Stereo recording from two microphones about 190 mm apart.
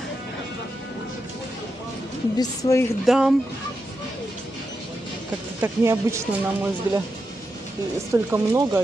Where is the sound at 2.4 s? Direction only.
15° left (ahead or behind).